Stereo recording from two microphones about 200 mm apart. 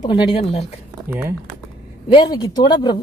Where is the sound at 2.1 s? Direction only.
20° left (ahead or behind).